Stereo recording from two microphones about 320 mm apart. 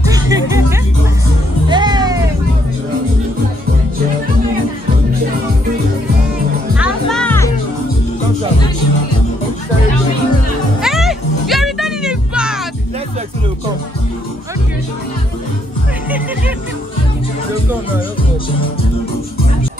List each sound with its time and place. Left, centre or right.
0.0 s music: centre
6.8 s music: centre
10.8 s music: centre